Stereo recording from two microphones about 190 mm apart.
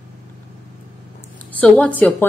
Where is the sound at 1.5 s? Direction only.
5° left (ahead or behind).